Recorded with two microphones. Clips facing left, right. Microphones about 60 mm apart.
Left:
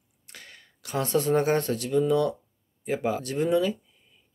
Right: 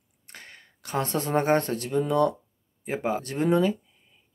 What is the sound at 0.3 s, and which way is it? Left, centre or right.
A man's voice, right.